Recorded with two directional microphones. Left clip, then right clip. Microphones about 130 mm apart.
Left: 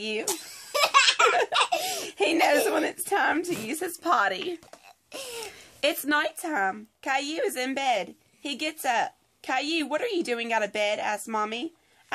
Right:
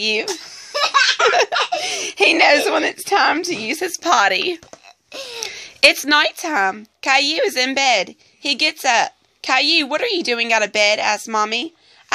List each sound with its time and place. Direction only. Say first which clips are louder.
0.3 s baby laughter: right 5 dB; 5° right (ahead or behind)
1.2 s speech: right 6 dB; 15° right (ahead or behind)